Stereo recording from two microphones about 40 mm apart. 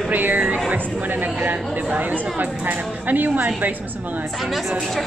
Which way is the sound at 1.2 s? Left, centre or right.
Right.